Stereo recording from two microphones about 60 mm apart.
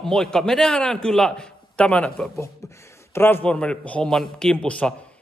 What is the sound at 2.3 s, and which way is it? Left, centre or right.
Speech, left.